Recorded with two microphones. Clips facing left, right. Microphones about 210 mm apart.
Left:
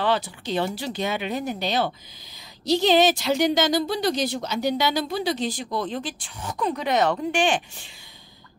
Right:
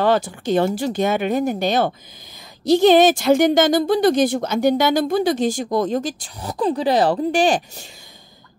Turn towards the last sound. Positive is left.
turn(degrees=-40)  # may be behind; listen again after turning